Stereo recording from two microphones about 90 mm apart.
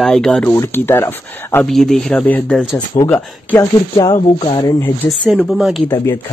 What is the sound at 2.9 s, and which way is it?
Speech, 65° left (ahead or behind).